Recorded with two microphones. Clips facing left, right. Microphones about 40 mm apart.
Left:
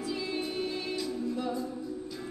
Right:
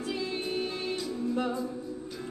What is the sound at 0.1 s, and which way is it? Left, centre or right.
Music, right.